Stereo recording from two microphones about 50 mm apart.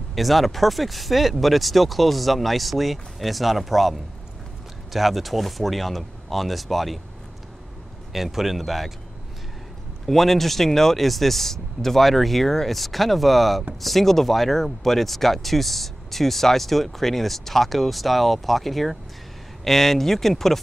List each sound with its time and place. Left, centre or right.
0.1 s speech: centre
8.1 s speech: centre
10.0 s speech: centre